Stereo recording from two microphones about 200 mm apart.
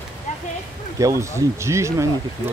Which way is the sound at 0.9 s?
15° right (ahead or behind).